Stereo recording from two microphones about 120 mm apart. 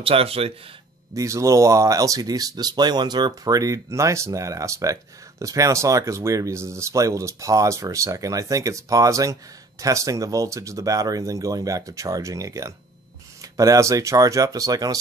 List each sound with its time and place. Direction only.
0.0 s speech: 50° right (ahead or behind)
1.1 s speech: 25° right (ahead or behind)